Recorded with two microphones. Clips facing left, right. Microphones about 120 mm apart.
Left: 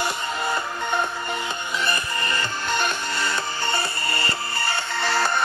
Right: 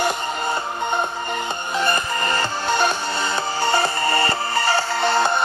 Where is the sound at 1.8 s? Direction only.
40° right (ahead or behind).